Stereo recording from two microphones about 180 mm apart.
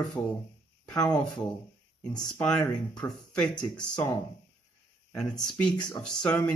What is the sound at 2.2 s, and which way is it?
Speech, 5° left (ahead or behind).